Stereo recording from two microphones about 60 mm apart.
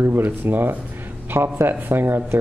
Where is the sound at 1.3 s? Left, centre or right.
Right.